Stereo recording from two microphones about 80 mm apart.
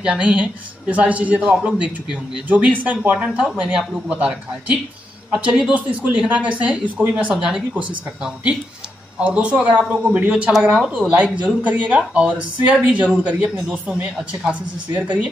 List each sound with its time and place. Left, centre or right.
0.0 s a man's voice: centre
9.2 s a man's voice: centre